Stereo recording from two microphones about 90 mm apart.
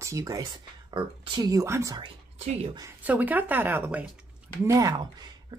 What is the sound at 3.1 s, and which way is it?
Speech, 20° right (ahead or behind).